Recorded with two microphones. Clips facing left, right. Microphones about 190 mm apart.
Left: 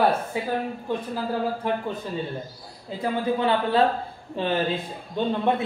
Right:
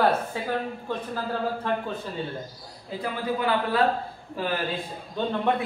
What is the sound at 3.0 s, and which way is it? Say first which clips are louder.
A man's voice: left 4 dB; 25° left (ahead or behind).